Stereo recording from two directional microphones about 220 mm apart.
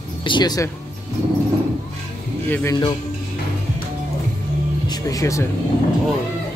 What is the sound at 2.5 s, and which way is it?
Speech, 10° left (ahead or behind).